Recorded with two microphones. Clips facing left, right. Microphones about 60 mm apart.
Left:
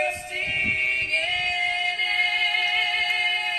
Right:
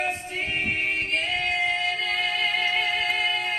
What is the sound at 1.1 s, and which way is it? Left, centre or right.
Music, left.